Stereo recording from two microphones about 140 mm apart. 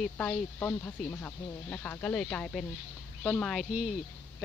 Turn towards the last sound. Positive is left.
turn(degrees=0)  # may be behind; listen again after turning